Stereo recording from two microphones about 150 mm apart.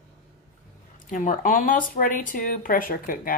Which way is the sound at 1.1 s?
60° left (ahead or behind).